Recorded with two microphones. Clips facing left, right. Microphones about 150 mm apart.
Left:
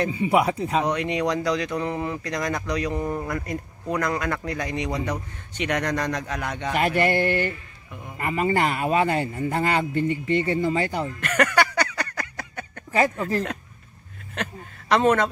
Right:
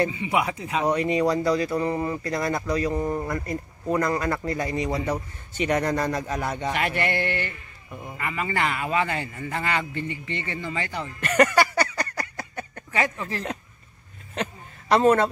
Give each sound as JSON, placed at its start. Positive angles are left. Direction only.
{"t": 0.1, "sound": "a man's voice", "side_deg": 40}
{"t": 0.8, "sound": "speech", "side_deg": -5}
{"t": 7.0, "sound": "a man's voice", "side_deg": 40}
{"t": 11.1, "sound": "speech", "side_deg": -10}
{"t": 12.2, "sound": "a sound", "side_deg": -5}
{"t": 14.3, "sound": "a sound", "side_deg": -10}